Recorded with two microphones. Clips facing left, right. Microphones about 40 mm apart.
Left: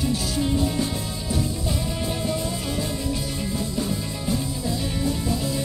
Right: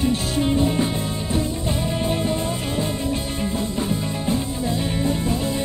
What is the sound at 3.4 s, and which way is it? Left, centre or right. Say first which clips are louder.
Music: right 3 dB; right.